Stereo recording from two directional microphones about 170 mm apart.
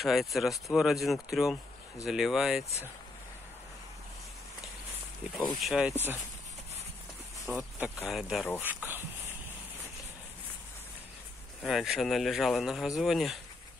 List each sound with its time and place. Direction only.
0.0 s speech: centre (ahead or behind)
5.6 s speech: centre (ahead or behind)
7.4 s speech: 5° right (ahead or behind)
8.6 s speech: 10° right (ahead or behind)
11.6 s speech: centre (ahead or behind)